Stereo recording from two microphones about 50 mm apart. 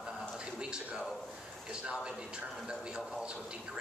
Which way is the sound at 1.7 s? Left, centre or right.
Centre.